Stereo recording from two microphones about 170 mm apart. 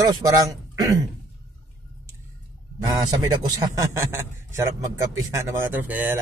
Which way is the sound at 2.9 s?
20° right (ahead or behind).